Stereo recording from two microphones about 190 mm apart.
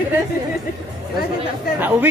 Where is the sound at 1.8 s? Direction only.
10° right (ahead or behind).